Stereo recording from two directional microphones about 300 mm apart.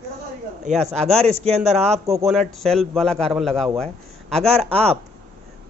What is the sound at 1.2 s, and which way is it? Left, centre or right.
Speech, right.